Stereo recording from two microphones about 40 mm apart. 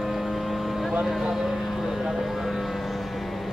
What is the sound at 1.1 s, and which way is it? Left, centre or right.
Vehicle, centre.